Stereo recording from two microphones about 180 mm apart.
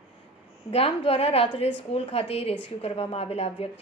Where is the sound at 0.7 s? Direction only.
35° left (ahead or behind).